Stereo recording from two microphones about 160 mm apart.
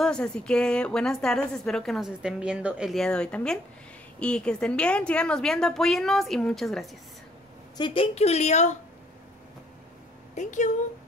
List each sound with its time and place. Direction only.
0.0 s a woman's voice: 5° left (ahead or behind)
7.7 s a woman's voice: 30° left (ahead or behind)
10.3 s speech: 50° left (ahead or behind)